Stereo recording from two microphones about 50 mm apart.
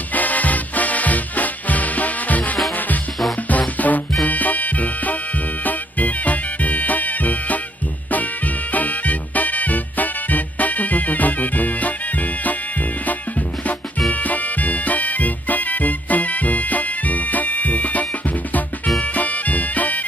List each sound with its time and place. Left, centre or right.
0.1 s music: left
8.7 s music: left
14.1 s music: left